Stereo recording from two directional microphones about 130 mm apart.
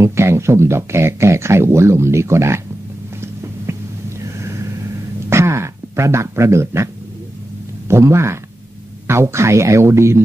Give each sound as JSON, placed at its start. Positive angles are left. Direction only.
{"t": 0.0, "sound": "speech", "side_deg": -20}
{"t": 3.7, "sound": "whispering", "side_deg": -20}
{"t": 4.2, "sound": "vehicle", "side_deg": -20}
{"t": 5.3, "sound": "a sound", "side_deg": -20}
{"t": 7.9, "sound": "speech", "side_deg": -20}